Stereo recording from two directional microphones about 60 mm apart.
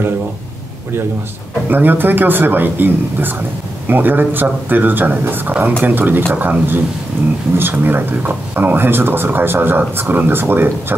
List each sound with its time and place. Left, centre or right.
1.7 s speech: right